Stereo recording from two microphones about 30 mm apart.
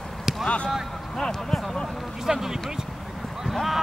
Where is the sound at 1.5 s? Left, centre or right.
Centre.